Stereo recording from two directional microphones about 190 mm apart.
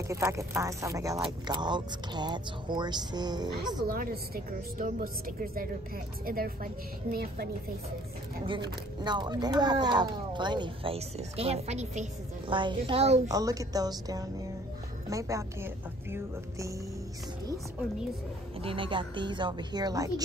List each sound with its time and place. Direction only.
0.1 s speech: 15° right (ahead or behind)
3.8 s a woman's voice: 50° right (ahead or behind)
8.5 s speech: 25° right (ahead or behind)
12.4 s speech: 25° right (ahead or behind)
13.3 s speech: 20° right (ahead or behind)
18.6 s speech: 30° right (ahead or behind)